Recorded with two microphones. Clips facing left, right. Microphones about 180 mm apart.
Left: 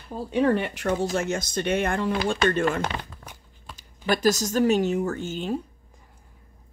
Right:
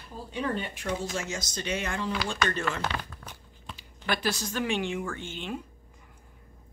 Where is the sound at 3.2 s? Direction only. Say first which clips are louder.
Left 1 dB; 30° left (ahead or behind).